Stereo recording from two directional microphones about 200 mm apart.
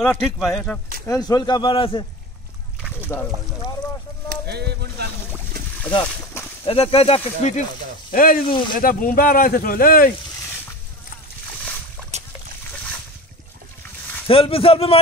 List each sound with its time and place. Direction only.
0.0 s speech: centre (ahead or behind)
1.0 s speech: 20° left (ahead or behind)
4.3 s speech: 55° right (ahead or behind)
6.6 s speech: 30° left (ahead or behind)
8.1 s speech: 45° left (ahead or behind)
12.0 s boat: 5° left (ahead or behind)
14.2 s speech: 25° left (ahead or behind)